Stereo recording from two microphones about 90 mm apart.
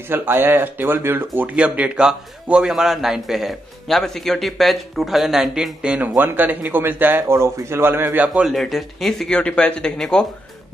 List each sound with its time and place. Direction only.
0.1 s speech: 25° right (ahead or behind)
8.5 s speech: centre (ahead or behind)
9.4 s speech: 15° left (ahead or behind)